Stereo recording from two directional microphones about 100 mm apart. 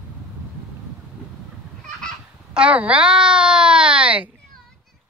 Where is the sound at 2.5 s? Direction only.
10° right (ahead or behind).